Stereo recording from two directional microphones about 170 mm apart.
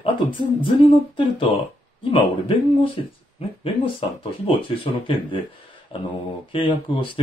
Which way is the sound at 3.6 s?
35° left (ahead or behind).